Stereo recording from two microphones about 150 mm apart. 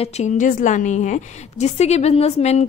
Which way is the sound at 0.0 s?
50° left (ahead or behind).